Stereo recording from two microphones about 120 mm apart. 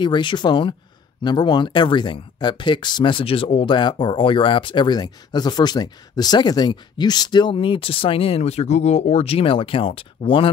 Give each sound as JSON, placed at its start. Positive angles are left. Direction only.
{"t": 0.0, "sound": "speech", "side_deg": 40}